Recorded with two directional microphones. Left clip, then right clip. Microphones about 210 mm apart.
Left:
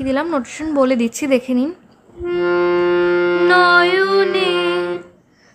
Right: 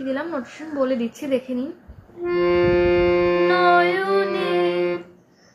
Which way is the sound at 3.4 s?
45° left (ahead or behind).